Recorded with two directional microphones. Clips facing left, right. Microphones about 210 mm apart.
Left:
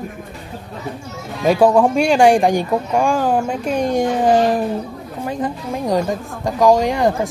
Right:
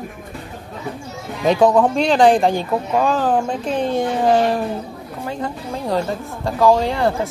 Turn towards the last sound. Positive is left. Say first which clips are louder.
# left 2 dB
turn(degrees=15)  # may be behind; listen again after turning